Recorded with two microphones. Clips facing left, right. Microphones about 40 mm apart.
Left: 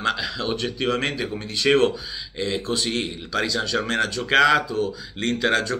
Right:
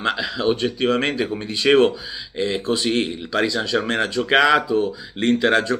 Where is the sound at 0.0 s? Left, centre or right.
Centre.